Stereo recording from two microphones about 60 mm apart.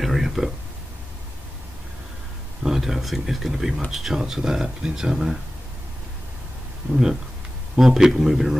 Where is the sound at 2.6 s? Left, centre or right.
Centre.